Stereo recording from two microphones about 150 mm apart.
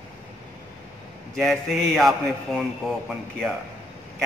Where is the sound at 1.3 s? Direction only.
Centre (ahead or behind).